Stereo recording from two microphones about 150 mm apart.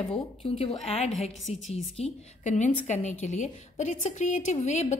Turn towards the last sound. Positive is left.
turn(degrees=50)  # may be behind; listen again after turning